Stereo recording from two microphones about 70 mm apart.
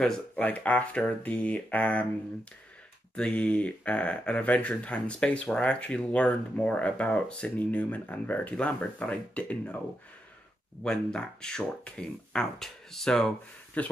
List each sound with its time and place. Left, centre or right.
0.0 s speech: centre
3.2 s speech: centre
10.8 s speech: centre
13.8 s speech: centre